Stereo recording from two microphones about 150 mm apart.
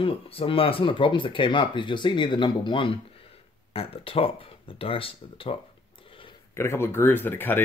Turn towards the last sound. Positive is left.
turn(degrees=15)  # may be behind; listen again after turning